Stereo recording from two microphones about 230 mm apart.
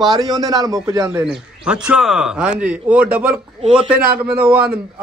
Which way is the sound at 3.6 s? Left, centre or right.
Right.